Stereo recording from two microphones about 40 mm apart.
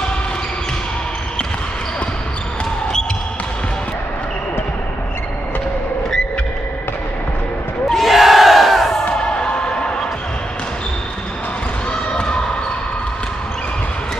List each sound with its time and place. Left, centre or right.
7.9 s crowd: centre
9.0 s music: left
11.9 s basketball bounce: left